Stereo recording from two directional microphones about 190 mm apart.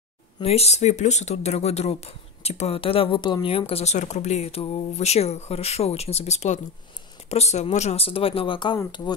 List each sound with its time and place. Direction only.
0.4 s speech: 35° left (ahead or behind)